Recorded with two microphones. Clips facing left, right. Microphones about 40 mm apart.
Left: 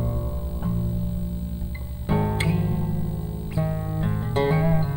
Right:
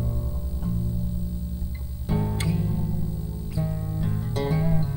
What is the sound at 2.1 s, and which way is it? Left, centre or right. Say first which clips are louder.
Music: left 3 dB; left.